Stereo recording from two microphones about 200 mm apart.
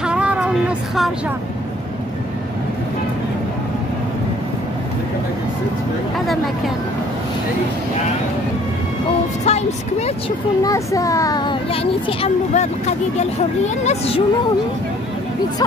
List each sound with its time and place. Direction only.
0.0 s music: 5° right (ahead or behind)
9.4 s speech: 35° left (ahead or behind)
10.6 s a child's voice: 15° left (ahead or behind)
13.8 s a child's voice: 30° left (ahead or behind)